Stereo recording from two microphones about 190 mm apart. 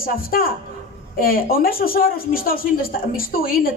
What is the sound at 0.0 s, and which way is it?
Speech, 50° left (ahead or behind).